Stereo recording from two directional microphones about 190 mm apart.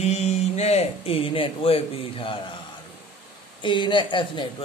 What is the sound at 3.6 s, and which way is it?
Speech, 25° left (ahead or behind).